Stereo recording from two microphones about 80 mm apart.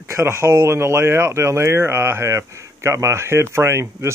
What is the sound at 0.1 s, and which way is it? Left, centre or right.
Speech, right.